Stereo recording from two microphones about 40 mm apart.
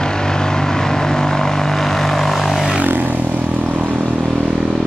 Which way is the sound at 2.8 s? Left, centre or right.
Right.